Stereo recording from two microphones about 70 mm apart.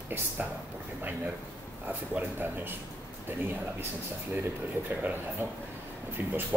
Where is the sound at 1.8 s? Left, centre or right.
Right.